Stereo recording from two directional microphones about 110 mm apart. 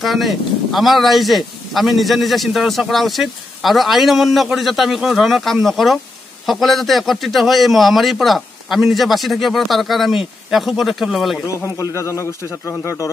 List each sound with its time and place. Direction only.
0.0 s speech: centre (ahead or behind)
11.4 s speech: 30° left (ahead or behind)